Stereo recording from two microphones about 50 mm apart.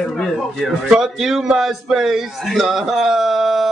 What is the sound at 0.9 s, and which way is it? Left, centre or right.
A man's voice, centre.